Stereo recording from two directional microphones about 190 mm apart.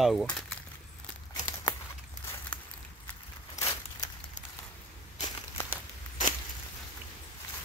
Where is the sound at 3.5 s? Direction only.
15° left (ahead or behind).